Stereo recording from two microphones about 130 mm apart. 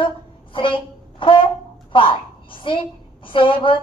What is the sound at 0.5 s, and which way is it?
A woman's voice, 40° left (ahead or behind).